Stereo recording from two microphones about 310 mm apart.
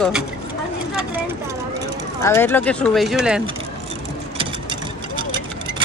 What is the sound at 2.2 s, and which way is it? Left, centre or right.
Speech, centre.